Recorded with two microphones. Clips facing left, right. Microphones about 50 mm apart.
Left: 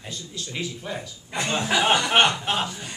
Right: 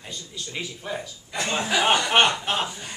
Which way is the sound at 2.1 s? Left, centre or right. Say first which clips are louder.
Even; centre.